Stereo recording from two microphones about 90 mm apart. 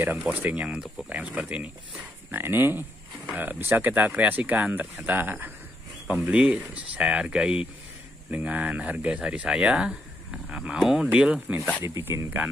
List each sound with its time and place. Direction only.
0.3 s speech: 20° right (ahead or behind)
11.8 s speech: 30° right (ahead or behind)